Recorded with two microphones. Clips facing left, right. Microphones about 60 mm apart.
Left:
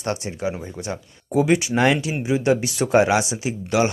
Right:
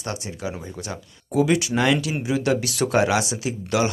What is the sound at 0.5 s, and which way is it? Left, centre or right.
Speech, centre.